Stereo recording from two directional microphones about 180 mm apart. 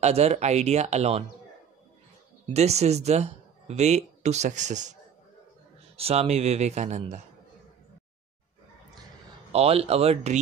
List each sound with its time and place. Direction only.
0.0 s speech: 35° right (ahead or behind)
2.5 s speech: 35° right (ahead or behind)
5.9 s speech: 35° right (ahead or behind)
9.5 s speech: 35° right (ahead or behind)